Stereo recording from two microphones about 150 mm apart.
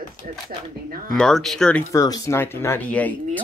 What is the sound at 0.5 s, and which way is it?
Speech, 60° right (ahead or behind).